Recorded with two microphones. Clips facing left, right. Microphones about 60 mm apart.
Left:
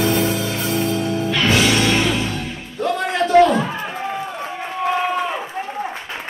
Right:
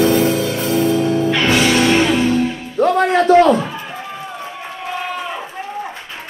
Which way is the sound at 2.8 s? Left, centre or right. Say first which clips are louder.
Right 6 dB; right.